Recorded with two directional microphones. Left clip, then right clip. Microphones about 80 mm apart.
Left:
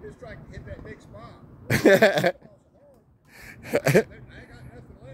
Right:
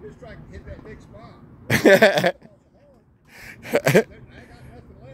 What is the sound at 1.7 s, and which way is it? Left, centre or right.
Speech, right.